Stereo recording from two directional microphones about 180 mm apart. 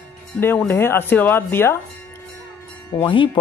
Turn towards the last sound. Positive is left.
turn(degrees=25)  # may be behind; listen again after turning